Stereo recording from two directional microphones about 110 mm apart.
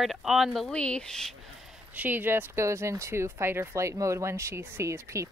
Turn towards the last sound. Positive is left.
turn(degrees=-25)  # may be behind; listen again after turning